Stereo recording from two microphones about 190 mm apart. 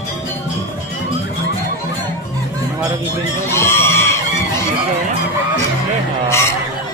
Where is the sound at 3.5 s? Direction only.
15° left (ahead or behind).